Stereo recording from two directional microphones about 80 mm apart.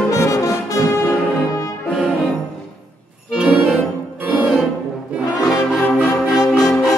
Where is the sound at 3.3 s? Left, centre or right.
Centre.